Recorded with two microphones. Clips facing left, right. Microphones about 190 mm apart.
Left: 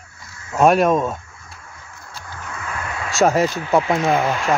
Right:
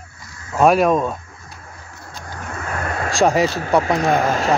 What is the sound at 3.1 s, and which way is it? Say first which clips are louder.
Speech: even; centre (ahead or behind).